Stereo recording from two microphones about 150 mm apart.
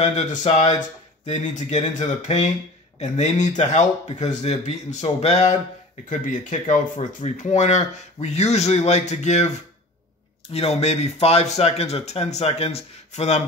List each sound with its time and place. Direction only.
0.0 s speech: 50° left (ahead or behind)
6.0 s speech: 60° left (ahead or behind)
10.5 s speech: 45° left (ahead or behind)